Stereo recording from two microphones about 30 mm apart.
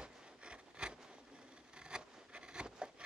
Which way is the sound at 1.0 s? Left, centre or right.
Right.